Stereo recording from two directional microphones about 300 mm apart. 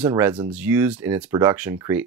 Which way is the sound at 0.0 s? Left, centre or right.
Centre.